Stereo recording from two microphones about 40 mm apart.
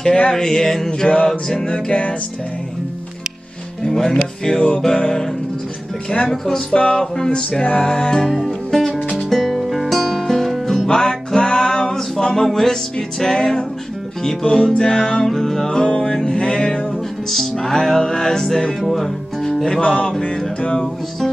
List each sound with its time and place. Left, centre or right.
0.3 s music: centre
1.9 s music: left
3.8 s music: centre
4.6 s music: left
6.2 s music: centre
6.7 s music: left
8.4 s music: centre
10.9 s music: centre
15.8 s music: left
17.3 s music: centre
18.9 s speech: centre
19.8 s music: left